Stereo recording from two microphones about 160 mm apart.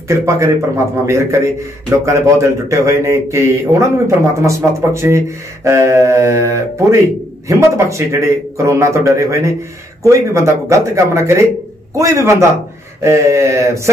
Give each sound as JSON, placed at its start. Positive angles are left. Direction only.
{"t": 0.1, "sound": "a man's voice", "side_deg": -15}